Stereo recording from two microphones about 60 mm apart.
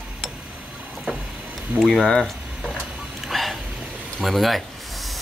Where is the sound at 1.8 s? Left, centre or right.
Centre.